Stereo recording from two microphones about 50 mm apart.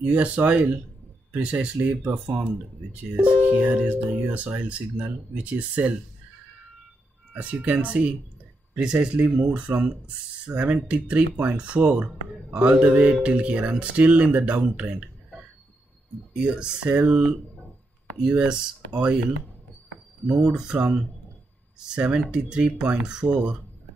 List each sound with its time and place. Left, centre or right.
0.0 s speech: right
7.3 s speech: right
16.3 s speech: centre
18.3 s speech: right
20.2 s speech: centre
20.7 s speech: right